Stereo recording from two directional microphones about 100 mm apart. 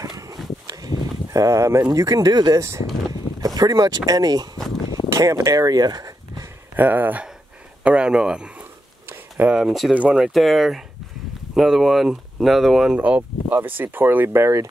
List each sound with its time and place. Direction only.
0.0 s a sound: 40° right (ahead or behind)
1.9 s speech: 35° right (ahead or behind)
6.8 s speech: 15° right (ahead or behind)